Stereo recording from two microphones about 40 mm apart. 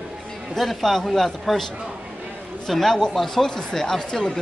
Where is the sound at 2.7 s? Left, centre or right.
Centre.